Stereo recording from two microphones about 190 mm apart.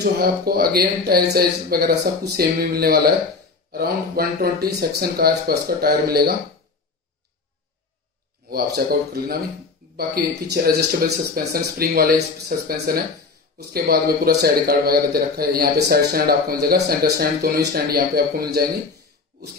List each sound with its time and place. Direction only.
0.0 s speech: 55° right (ahead or behind)
8.5 s speech: 55° right (ahead or behind)
19.3 s a sound: 50° right (ahead or behind)